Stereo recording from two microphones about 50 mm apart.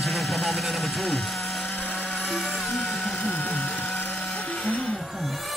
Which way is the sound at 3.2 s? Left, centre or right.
Left.